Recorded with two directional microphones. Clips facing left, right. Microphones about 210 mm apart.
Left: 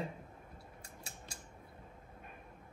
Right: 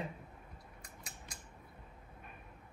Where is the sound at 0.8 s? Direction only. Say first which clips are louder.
Even; 30° left (ahead or behind).